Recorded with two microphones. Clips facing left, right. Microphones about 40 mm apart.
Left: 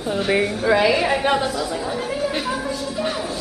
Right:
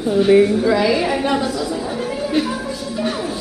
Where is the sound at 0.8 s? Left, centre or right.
Centre.